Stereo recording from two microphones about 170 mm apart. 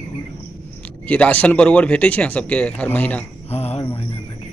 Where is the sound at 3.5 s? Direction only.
35° left (ahead or behind).